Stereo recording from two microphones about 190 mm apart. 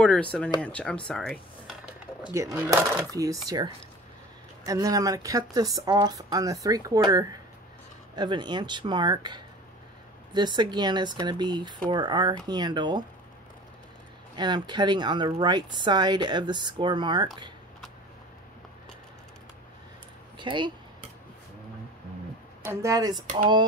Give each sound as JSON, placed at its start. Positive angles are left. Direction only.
{"t": 0.0, "sound": "speech", "side_deg": 5}
{"t": 2.3, "sound": "speech", "side_deg": -15}
{"t": 14.3, "sound": "speech", "side_deg": -25}
{"t": 20.3, "sound": "a sound", "side_deg": -25}
{"t": 22.7, "sound": "speech", "side_deg": -15}